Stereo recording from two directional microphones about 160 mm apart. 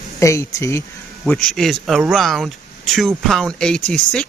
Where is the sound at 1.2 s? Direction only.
Centre (ahead or behind).